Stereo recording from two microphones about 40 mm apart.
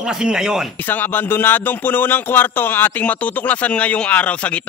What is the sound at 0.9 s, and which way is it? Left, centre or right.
Speech, left.